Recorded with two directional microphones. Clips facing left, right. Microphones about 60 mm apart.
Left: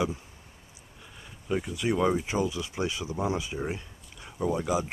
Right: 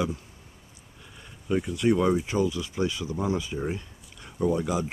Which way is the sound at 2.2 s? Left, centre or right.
Centre.